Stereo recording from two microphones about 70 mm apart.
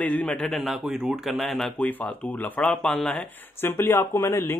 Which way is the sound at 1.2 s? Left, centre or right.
Centre.